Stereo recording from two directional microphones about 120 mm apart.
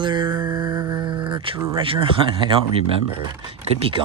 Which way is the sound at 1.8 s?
50° right (ahead or behind).